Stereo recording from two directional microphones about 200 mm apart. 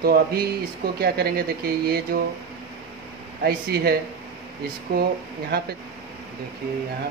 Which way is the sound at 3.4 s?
50° right (ahead or behind).